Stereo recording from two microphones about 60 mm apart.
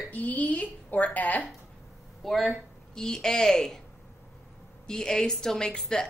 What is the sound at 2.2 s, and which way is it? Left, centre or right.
A woman's voice, centre.